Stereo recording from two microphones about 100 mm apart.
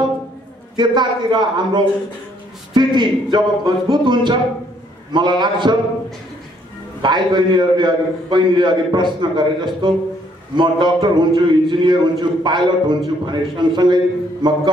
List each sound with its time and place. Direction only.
0.7 s a man's voice: 45° right (ahead or behind)
7.0 s a man's voice: 50° right (ahead or behind)